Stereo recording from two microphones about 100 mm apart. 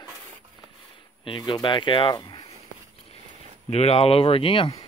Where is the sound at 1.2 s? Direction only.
55° left (ahead or behind).